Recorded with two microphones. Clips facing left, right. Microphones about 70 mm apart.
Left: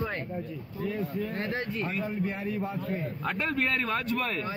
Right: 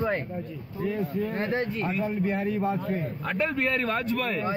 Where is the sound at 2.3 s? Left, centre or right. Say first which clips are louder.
Right 6 dB; right.